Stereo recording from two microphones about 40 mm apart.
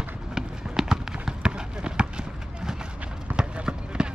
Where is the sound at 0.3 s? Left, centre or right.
Centre.